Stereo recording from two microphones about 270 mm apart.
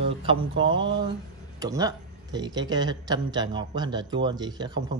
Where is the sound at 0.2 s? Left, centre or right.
Centre.